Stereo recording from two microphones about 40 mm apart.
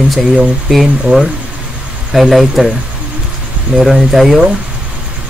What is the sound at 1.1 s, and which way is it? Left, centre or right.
Speech, right.